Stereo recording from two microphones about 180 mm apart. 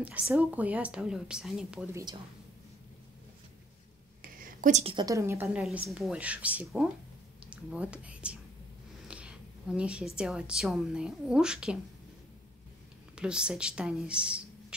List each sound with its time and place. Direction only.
0.0 s a woman's voice: 5° right (ahead or behind)
4.2 s a sound: 50° right (ahead or behind)
4.9 s a woman's voice: 20° right (ahead or behind)
13.1 s speech: 5° right (ahead or behind)